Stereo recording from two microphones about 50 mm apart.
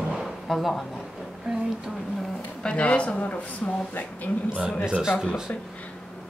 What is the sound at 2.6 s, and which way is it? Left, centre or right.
Speech, left.